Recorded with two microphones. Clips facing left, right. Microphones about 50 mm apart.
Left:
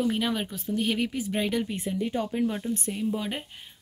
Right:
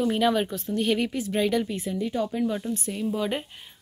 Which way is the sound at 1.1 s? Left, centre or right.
Centre.